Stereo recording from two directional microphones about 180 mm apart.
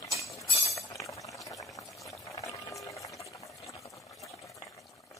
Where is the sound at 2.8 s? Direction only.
20° left (ahead or behind).